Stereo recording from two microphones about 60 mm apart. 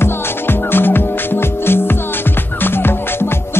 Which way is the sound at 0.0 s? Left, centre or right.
Left.